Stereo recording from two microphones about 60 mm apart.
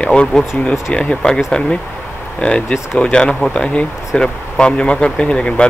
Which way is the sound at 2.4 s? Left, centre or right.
Centre.